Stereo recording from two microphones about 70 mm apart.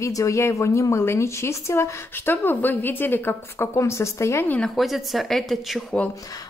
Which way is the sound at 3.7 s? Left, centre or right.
Left.